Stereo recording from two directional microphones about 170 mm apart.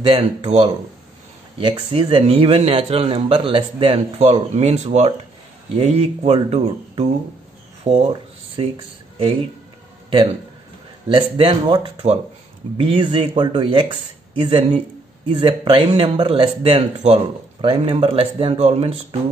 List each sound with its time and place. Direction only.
0.0 s speech: 35° right (ahead or behind)
11.1 s speech: 30° right (ahead or behind)